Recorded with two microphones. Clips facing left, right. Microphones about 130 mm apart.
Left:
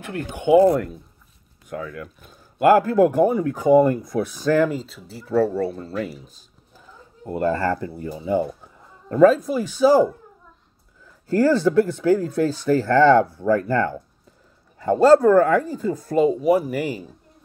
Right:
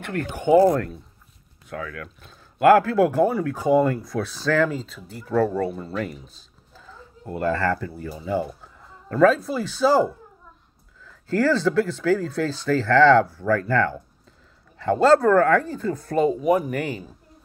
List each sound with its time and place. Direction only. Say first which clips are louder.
0.0 s speech: even; 10° left (ahead or behind)
6.7 s speech: right 2 dB; 20° left (ahead or behind)
11.1 s speech: left 3 dB; 15° left (ahead or behind)